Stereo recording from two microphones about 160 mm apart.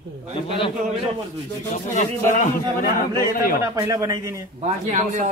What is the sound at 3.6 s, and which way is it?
Speech, 20° right (ahead or behind).